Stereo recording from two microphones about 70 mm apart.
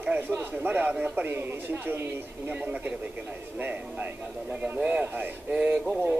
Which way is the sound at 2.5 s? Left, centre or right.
Right.